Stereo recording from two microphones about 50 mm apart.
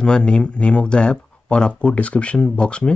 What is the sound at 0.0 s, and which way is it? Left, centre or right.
Speech, centre.